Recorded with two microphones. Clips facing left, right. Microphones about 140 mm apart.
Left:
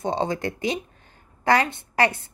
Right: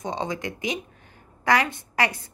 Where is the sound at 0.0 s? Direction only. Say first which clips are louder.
Left 4 dB; 35° left (ahead or behind).